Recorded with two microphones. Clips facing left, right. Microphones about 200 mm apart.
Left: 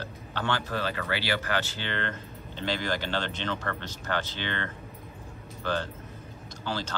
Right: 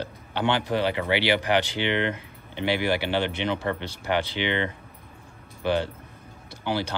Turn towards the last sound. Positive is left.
turn(degrees=-15)  # may be behind; listen again after turning